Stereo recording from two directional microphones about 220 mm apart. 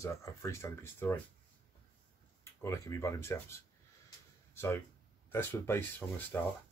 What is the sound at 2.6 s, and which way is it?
Speech, 15° left (ahead or behind).